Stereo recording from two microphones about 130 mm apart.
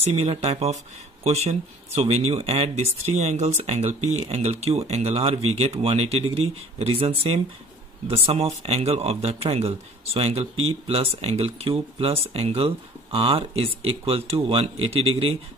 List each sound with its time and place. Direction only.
0.1 s speech: 50° right (ahead or behind)